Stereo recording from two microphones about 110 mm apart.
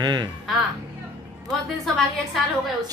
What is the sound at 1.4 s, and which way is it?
Speech, centre (ahead or behind).